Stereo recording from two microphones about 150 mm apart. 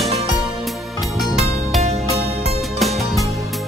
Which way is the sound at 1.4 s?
Centre (ahead or behind).